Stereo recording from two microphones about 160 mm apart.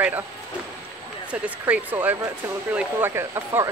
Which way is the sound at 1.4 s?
10° right (ahead or behind).